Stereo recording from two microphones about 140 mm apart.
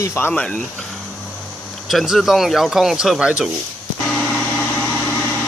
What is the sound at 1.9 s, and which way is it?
A man's voice, centre (ahead or behind).